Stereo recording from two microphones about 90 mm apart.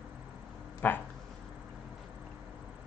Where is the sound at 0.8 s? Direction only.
20° left (ahead or behind).